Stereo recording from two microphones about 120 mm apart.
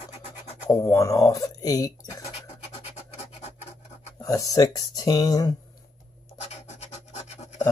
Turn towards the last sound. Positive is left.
turn(degrees=65)  # may be behind; listen again after turning